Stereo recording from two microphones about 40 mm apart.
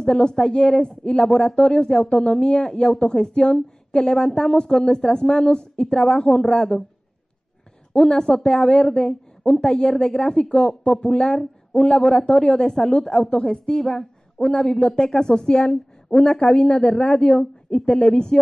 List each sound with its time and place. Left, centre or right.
0.0 s a woman's voice: centre
6.1 s a woman's voice: centre
8.1 s a woman's voice: centre
9.9 s a woman's voice: centre
14.9 s a woman's voice: centre